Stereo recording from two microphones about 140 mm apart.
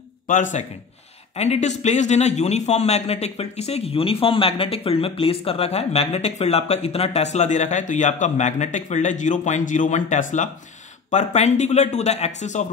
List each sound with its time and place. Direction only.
0.3 s speech: 65° left (ahead or behind)
1.3 s a man's voice: 50° left (ahead or behind)